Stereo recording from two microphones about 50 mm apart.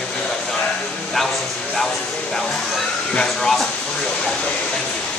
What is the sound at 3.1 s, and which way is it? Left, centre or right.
Speech, centre.